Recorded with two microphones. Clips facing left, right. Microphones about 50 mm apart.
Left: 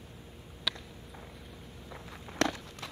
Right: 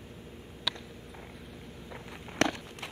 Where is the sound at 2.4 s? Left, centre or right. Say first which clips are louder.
Right 2 dB; right.